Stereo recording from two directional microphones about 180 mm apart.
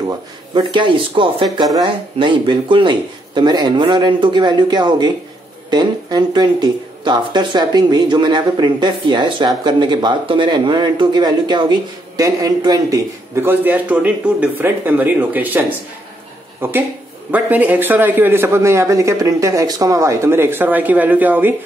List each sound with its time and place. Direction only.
0.6 s speech: 25° right (ahead or behind); by 15.6 s 10° right (ahead or behind)
16.6 s a man's voice: 10° right (ahead or behind)